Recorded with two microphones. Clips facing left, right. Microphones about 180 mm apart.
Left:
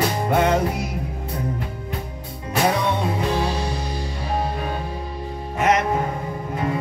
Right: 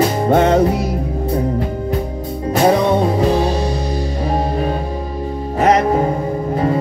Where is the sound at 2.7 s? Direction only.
40° right (ahead or behind).